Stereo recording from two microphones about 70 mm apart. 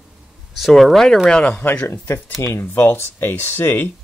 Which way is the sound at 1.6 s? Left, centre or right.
Left.